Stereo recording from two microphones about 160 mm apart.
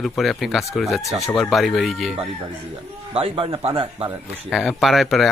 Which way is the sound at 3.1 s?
35° right (ahead or behind).